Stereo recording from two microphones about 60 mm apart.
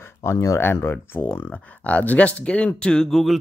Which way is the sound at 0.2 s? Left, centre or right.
Left.